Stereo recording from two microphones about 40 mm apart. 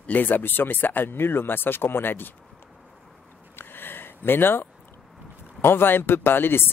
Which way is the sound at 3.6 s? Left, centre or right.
Left.